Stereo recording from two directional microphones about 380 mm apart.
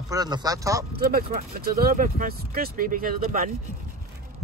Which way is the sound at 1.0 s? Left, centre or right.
Right.